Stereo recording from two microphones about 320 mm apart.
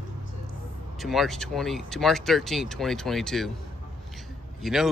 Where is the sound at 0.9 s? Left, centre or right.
Centre.